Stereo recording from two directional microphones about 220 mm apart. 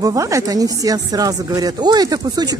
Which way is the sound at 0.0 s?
15° right (ahead or behind).